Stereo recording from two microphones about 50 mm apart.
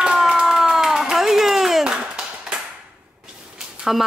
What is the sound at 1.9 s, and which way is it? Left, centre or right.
Clapping, centre.